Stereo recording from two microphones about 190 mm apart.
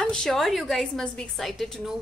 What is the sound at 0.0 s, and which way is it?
A woman's voice, 5° left (ahead or behind).